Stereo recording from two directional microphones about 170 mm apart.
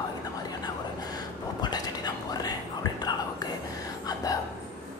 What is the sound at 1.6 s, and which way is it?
Whispering, 25° left (ahead or behind).